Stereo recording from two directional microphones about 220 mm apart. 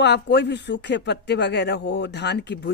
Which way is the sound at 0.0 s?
50° left (ahead or behind).